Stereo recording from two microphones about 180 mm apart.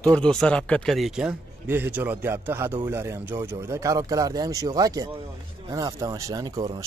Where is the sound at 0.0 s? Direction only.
5° left (ahead or behind).